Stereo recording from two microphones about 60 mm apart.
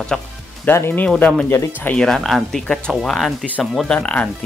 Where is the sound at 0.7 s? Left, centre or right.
Left.